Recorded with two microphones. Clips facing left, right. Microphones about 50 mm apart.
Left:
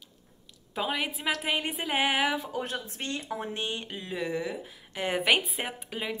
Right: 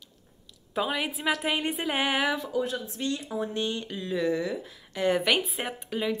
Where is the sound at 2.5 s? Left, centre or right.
Left.